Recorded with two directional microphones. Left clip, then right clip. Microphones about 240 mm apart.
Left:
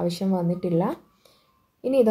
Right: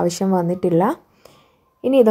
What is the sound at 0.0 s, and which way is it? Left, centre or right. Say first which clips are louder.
A woman's voice: right 7 dB; right.